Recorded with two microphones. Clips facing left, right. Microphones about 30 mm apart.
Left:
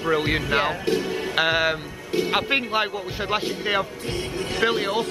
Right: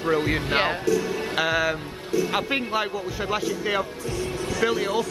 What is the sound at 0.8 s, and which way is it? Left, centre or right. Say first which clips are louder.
Speech: even; left.